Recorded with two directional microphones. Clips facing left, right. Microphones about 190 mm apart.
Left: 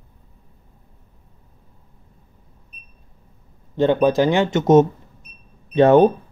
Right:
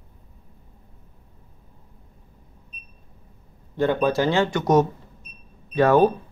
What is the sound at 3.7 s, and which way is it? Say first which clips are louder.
Speech: left 5 dB; 20° left (ahead or behind).